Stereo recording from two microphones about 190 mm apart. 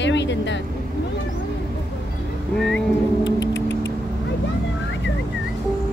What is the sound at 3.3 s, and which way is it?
Music, 70° left (ahead or behind).